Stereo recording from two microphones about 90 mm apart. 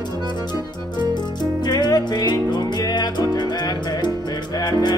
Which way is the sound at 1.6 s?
50° left (ahead or behind).